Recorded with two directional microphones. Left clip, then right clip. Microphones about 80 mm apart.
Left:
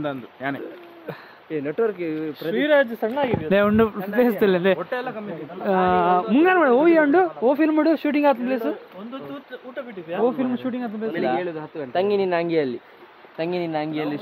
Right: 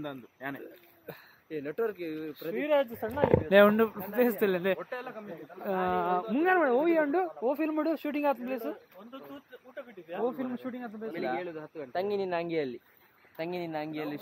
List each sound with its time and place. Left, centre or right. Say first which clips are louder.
0.0 s speech: left 11 dB; centre
1.5 s speech: left 9 dB; right
2.4 s speech: left 9 dB; centre
4.7 s speech: left 11 dB; centre
5.6 s speech: left 11 dB; centre
9.8 s a sound: left 10 dB; centre
10.2 s speech: left 11 dB; centre
13.4 s speech: left 10 dB; centre